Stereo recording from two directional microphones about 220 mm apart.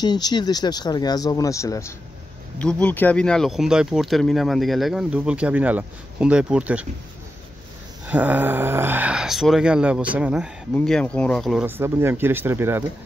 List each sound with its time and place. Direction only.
0.0 s speech: 20° left (ahead or behind); by 6.9 s 5° right (ahead or behind)
8.1 s speech: 5° right (ahead or behind)